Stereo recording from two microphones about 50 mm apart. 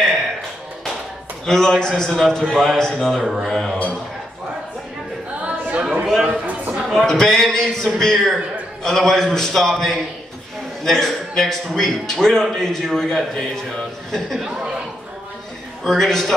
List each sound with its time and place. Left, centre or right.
1.4 s a man's voice: centre
5.4 s music: right
6.0 s a sound: centre
7.1 s a man's voice: centre
15.8 s a man's voice: centre